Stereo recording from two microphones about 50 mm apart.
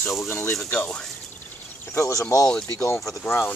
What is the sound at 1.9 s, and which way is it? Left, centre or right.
Speech, left.